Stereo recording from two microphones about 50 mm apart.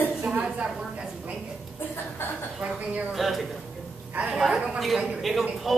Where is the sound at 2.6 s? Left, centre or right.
Right.